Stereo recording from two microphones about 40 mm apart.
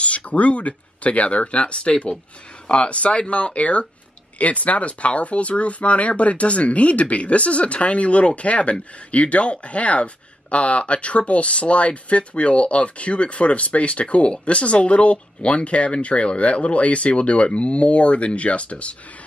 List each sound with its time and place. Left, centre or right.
0.0 s speech: left